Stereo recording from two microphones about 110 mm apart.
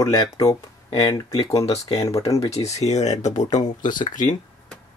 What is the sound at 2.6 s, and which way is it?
Speech, 85° left.